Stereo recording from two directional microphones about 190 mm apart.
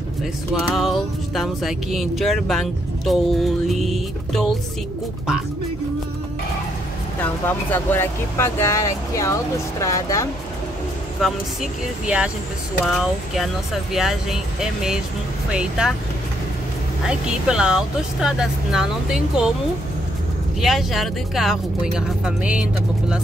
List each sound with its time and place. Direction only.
0.2 s speech: centre (ahead or behind)
7.2 s speech: 10° left (ahead or behind)
11.1 s speech: centre (ahead or behind)
13.9 s speech: centre (ahead or behind)
17.0 s speech: 5° right (ahead or behind)
20.6 s speech: centre (ahead or behind)